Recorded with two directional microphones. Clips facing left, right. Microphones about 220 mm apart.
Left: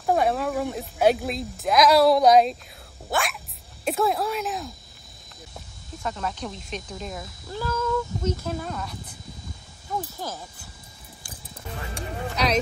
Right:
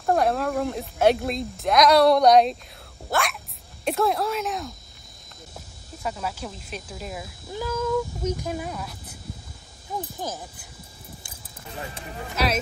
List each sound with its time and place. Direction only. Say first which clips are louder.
0.0 s speech: even; centre (ahead or behind)
6.0 s speech: even; 5° right (ahead or behind)
10.1 s speech: right 2 dB; 20° right (ahead or behind)
12.4 s speech: even; 5° right (ahead or behind)